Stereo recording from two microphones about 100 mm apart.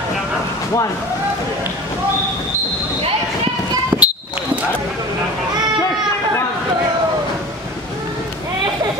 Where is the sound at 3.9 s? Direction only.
15° right (ahead or behind).